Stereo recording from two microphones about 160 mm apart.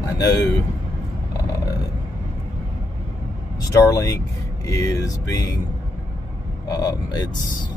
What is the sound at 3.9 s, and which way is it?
Speech, 20° left (ahead or behind).